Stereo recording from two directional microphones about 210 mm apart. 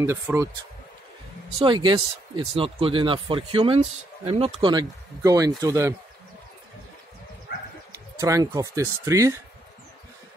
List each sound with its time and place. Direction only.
0.0 s speech: 10° right (ahead or behind)
1.6 s speech: 20° right (ahead or behind)
8.2 s speech: 15° right (ahead or behind)